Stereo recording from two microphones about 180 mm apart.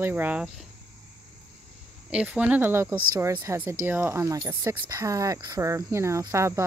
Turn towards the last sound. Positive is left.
turn(degrees=-15)  # may be behind; listen again after turning